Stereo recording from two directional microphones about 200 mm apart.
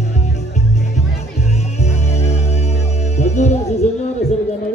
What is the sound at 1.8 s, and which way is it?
Music, 35° left (ahead or behind).